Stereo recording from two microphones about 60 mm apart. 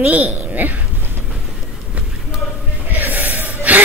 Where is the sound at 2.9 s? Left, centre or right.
Right.